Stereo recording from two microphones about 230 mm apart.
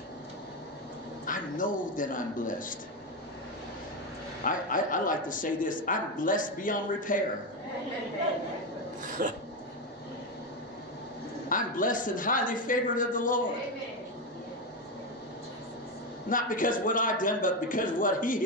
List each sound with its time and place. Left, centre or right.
1.2 s speech: left
4.5 s speech: left
9.2 s filing: right
11.4 s speech: left
16.3 s speech: left